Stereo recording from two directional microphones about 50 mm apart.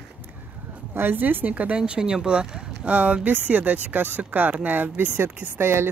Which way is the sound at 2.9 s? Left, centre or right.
Right.